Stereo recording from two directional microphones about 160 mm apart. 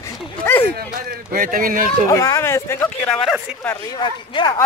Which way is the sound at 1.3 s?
60° right (ahead or behind).